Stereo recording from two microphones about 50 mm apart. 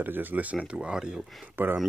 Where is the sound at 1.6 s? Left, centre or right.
Right.